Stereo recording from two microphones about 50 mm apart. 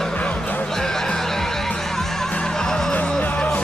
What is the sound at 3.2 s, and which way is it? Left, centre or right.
Music, left.